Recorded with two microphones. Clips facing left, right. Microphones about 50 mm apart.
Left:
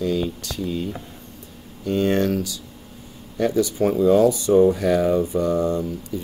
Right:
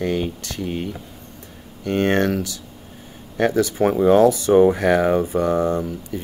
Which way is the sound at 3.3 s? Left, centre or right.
Right.